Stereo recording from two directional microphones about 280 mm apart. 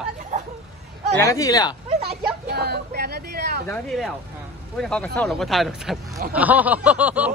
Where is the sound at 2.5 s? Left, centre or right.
Right.